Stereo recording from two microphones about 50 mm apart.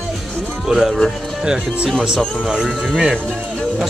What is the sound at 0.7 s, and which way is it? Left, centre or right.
Speech, centre.